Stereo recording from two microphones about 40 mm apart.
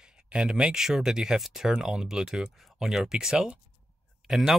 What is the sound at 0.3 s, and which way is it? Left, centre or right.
Speech, right.